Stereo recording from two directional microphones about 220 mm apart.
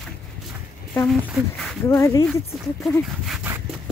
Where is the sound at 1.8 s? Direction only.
15° left (ahead or behind).